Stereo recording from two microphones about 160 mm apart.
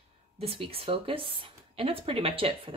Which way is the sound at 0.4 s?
35° right (ahead or behind).